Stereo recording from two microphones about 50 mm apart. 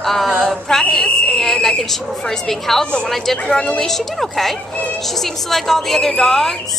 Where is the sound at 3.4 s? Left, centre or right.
Centre.